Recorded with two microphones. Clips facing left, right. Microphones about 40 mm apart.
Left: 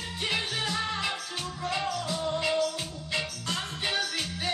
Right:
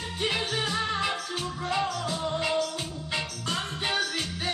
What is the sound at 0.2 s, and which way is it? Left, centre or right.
Music, centre.